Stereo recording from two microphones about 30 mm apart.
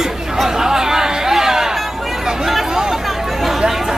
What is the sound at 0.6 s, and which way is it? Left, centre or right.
Chatter, centre.